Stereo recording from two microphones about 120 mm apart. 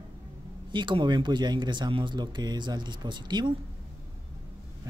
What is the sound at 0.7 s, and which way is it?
Speech, 40° right (ahead or behind).